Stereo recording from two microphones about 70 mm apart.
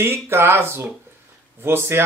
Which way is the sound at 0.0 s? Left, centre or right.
Right.